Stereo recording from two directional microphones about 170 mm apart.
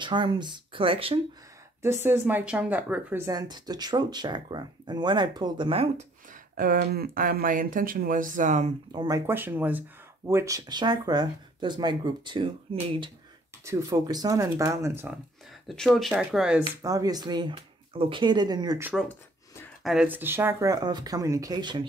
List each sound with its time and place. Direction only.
0.0 s speech: 25° right (ahead or behind)
1.8 s speech: 15° right (ahead or behind); by 6.0 s 35° right (ahead or behind)
6.5 s speech: 60° right (ahead or behind)
8.9 s speech: 20° right (ahead or behind)
13.7 s speech: 20° right (ahead or behind)
15.6 s speech: centre (ahead or behind)
16.6 s speech: 20° right (ahead or behind)
19.8 s speech: 5° right (ahead or behind); by 21.8 s 25° right (ahead or behind)